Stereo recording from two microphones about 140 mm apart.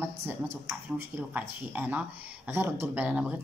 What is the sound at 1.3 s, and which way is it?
Speech, 10° right (ahead or behind).